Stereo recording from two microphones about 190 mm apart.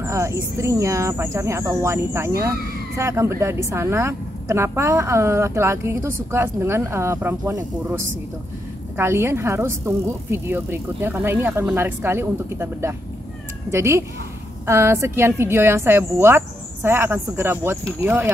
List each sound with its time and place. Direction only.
0.0 s a woman's voice: 15° right (ahead or behind)